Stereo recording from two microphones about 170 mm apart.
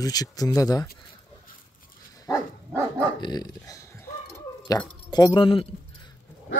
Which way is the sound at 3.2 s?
25° left (ahead or behind).